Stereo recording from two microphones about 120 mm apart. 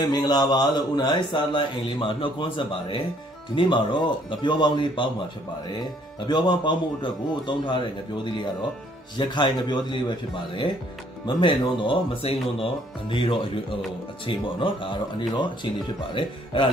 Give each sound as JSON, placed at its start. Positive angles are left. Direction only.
{"t": 0.0, "sound": "a man's voice", "side_deg": 35}
{"t": 6.2, "sound": "a man's voice", "side_deg": 40}